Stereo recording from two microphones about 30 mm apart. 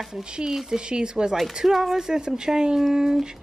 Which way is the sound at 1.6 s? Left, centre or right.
Centre.